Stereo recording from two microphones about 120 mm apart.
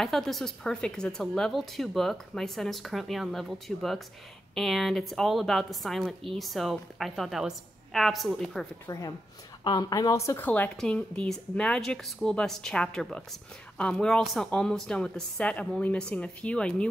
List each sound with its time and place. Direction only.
0.0 s a woman's voice: centre (ahead or behind)
8.8 s speech: 30° left (ahead or behind); by 16.9 s 10° left (ahead or behind)